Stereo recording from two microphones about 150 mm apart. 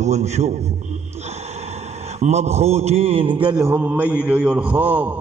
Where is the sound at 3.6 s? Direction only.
15° right (ahead or behind).